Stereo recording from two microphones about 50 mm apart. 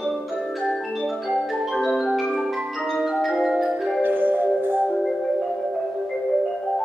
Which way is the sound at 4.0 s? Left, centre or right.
Right.